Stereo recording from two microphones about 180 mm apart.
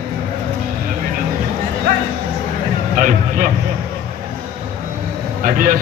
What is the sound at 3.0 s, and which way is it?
Vehicle, 45° right (ahead or behind).